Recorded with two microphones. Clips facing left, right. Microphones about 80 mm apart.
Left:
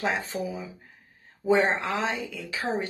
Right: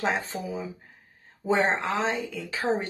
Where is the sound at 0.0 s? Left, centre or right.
Right.